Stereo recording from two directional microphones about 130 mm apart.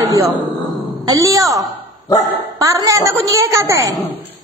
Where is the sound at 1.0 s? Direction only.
25° right (ahead or behind).